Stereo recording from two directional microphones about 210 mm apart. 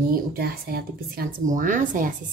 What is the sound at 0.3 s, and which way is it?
A woman's voice, 50° right (ahead or behind).